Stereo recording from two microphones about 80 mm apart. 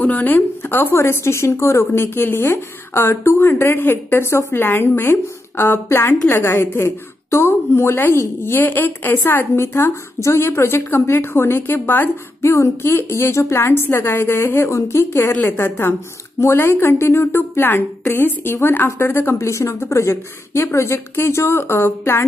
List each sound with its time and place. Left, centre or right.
0.0 s a woman's voice: left